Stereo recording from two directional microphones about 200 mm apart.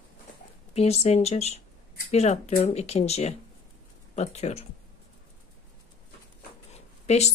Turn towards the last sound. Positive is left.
turn(degrees=35)  # may be behind; listen again after turning